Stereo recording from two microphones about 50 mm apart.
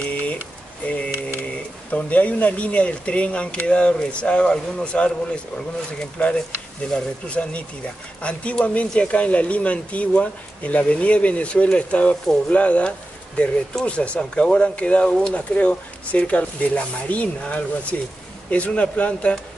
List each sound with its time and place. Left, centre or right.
0.0 s a sound: left
1.9 s speech: left
13.8 s speech: left